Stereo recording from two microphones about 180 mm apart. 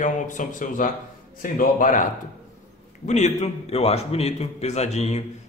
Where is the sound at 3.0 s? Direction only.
40° left (ahead or behind).